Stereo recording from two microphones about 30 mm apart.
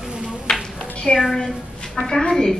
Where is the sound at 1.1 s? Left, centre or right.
Centre.